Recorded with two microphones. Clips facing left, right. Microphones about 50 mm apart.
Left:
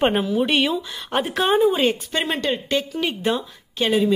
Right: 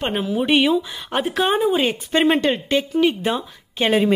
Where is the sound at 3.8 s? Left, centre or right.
Right.